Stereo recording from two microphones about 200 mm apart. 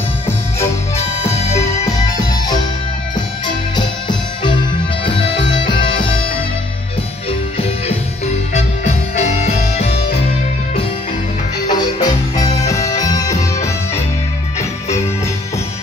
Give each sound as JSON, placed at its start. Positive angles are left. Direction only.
{"t": 0.9, "sound": "music", "side_deg": 35}
{"t": 3.4, "sound": "music", "side_deg": 20}
{"t": 8.5, "sound": "music", "side_deg": 35}
{"t": 11.7, "sound": "music", "side_deg": 20}